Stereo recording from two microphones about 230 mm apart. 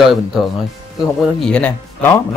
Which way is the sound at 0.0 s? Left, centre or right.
Centre.